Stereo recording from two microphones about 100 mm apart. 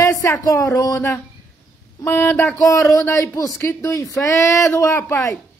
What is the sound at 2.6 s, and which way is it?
A man's voice, 35° left (ahead or behind).